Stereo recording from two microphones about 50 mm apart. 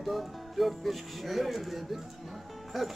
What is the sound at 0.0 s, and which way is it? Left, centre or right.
Speech, centre.